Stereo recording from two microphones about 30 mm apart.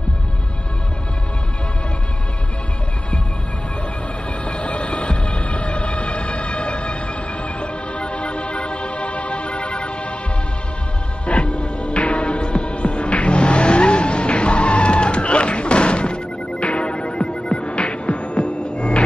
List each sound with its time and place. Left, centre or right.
4.5 s music: left
11.2 s music: left
12.4 s car: left